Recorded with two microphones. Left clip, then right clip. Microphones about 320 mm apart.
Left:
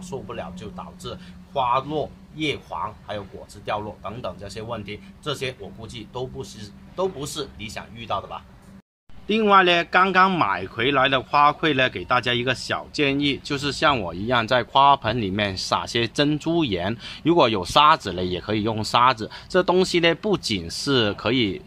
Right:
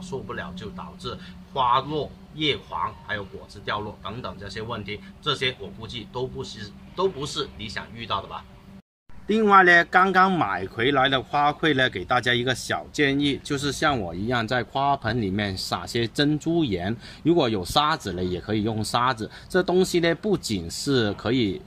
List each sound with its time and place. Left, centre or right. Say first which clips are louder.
0.0 s speech: even; centre